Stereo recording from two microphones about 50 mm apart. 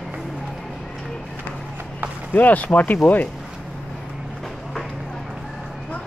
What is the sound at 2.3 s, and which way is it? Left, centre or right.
Speech, left.